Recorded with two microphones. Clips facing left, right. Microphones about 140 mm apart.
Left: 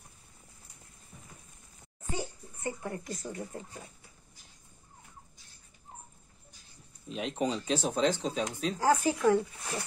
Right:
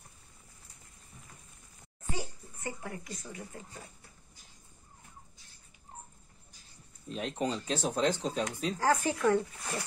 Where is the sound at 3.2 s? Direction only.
40° left (ahead or behind).